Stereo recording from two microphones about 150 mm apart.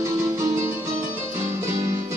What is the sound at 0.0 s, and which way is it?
Music, 20° right (ahead or behind).